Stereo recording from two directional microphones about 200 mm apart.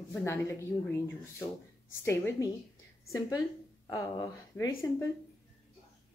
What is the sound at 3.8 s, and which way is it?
Speech, 15° left (ahead or behind).